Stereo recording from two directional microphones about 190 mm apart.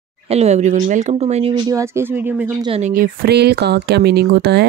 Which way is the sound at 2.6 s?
30° right (ahead or behind).